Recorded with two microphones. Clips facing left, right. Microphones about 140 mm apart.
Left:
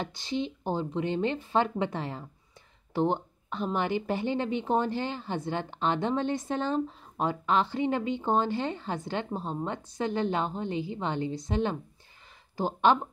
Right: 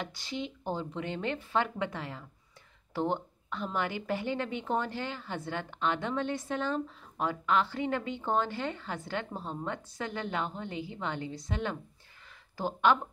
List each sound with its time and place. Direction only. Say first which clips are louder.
0.0 s a woman's voice: left 5 dB; 25° left (ahead or behind)